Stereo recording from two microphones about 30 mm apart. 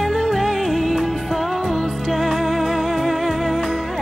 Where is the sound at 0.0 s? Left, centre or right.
Centre.